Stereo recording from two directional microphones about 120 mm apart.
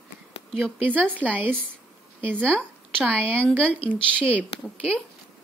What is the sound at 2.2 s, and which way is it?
A woman's voice, 10° left (ahead or behind).